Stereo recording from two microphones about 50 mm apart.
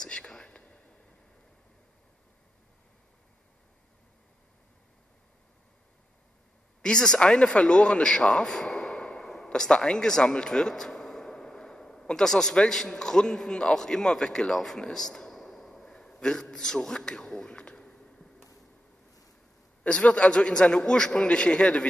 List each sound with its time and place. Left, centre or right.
0.0 s whispering: centre
6.8 s a man's voice: centre
8.5 s speech: centre
19.8 s a man's voice: left